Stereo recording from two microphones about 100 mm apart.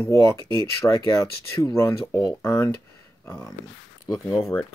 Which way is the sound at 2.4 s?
25° left (ahead or behind).